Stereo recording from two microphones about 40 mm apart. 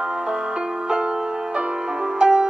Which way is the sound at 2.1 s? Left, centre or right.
Right.